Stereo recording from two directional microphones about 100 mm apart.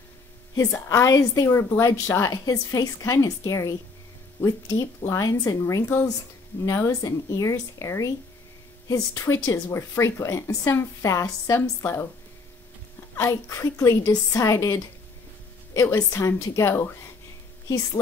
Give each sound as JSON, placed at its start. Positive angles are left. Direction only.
{"t": 0.8, "sound": "a woman's voice", "side_deg": 30}
{"t": 2.3, "sound": "a woman's voice", "side_deg": 35}
{"t": 13.1, "sound": "speech", "side_deg": 30}